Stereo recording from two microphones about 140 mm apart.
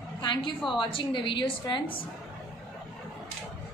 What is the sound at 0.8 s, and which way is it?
A woman's voice, 35° left (ahead or behind).